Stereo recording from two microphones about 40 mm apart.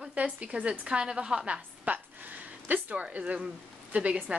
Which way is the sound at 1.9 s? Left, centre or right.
Right.